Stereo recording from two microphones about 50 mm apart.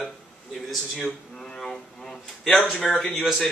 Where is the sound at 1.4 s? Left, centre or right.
Centre.